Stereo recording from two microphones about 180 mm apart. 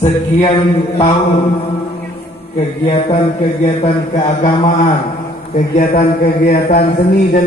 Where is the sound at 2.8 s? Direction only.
35° left (ahead or behind).